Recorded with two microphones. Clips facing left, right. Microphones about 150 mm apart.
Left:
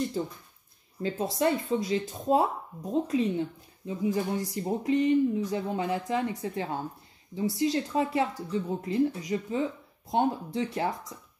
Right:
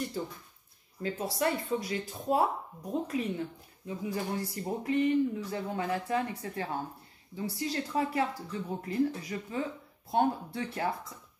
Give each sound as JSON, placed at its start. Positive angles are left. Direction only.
{"t": 1.0, "sound": "speech", "side_deg": 25}